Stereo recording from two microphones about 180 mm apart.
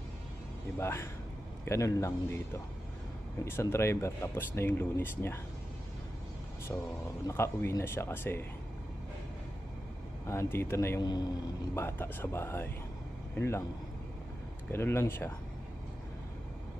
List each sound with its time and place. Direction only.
0.7 s speech: 15° left (ahead or behind)
6.7 s speech: 15° left (ahead or behind)
10.2 s speech: 15° left (ahead or behind)
14.7 s speech: 15° left (ahead or behind)